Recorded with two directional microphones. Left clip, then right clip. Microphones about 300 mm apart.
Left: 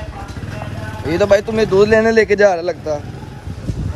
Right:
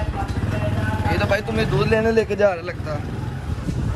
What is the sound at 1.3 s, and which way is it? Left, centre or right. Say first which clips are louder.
Speech: left 9 dB; left.